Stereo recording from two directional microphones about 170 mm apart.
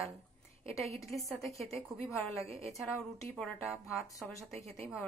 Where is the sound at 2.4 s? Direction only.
15° left (ahead or behind).